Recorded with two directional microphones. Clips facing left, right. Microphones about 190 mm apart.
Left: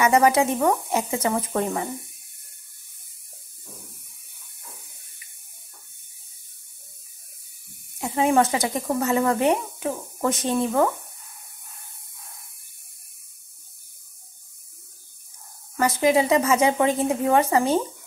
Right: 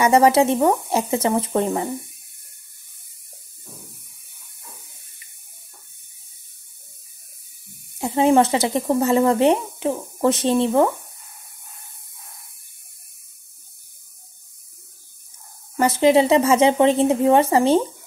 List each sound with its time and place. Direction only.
0.0 s speech: 30° right (ahead or behind)
8.0 s speech: 30° right (ahead or behind)
15.8 s speech: 30° right (ahead or behind)